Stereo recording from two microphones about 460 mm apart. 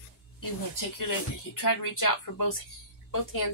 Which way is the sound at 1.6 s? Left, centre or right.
Left.